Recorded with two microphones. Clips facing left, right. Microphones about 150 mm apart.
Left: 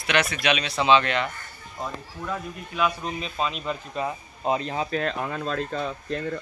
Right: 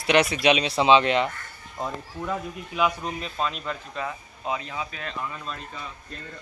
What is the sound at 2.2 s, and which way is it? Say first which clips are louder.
Speech: right 1 dB; 10° right (ahead or behind).